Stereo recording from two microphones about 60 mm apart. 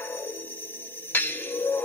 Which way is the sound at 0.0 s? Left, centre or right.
Left.